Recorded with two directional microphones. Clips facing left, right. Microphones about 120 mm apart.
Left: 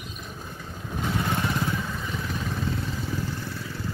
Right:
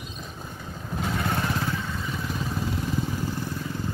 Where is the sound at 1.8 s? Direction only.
Centre (ahead or behind).